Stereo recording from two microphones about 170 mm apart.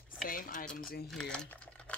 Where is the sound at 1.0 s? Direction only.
5° left (ahead or behind).